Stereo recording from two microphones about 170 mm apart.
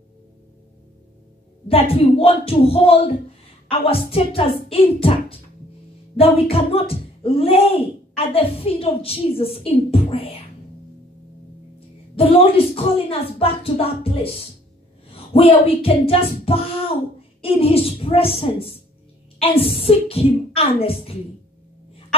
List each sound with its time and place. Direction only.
1.7 s a woman's voice: 35° left (ahead or behind)
12.2 s a woman's voice: 35° left (ahead or behind)